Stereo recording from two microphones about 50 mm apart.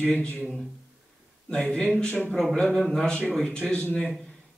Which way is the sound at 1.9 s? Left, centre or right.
Left.